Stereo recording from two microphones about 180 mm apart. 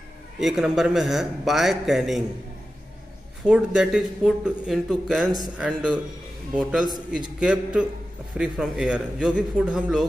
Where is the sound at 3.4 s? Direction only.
5° right (ahead or behind).